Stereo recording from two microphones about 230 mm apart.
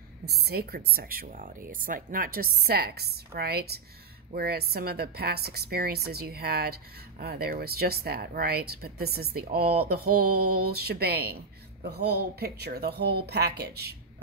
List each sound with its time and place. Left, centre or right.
0.5 s a woman's voice: right